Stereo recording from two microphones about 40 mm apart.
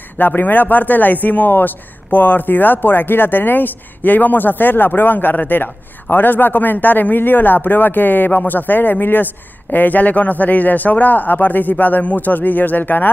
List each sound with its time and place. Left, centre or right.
0.4 s speech: left